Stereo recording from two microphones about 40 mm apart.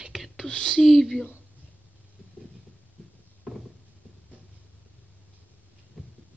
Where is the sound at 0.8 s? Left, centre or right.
Centre.